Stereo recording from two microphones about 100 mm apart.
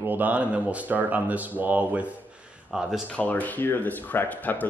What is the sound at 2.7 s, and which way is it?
Speech, 5° right (ahead or behind).